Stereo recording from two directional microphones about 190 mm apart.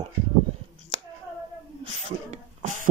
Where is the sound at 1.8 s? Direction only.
35° right (ahead or behind).